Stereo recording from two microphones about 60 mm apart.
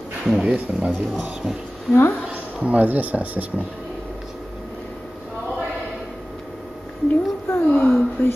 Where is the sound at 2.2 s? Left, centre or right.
Right.